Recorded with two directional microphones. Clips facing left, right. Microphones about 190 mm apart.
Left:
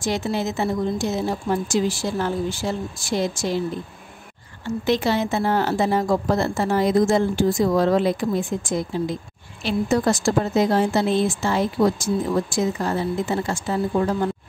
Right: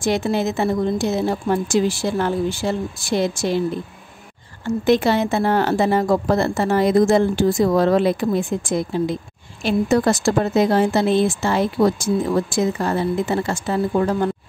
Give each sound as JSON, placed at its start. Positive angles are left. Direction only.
{"t": 0.0, "sound": "speech", "side_deg": -60}
{"t": 4.6, "sound": "speech", "side_deg": -50}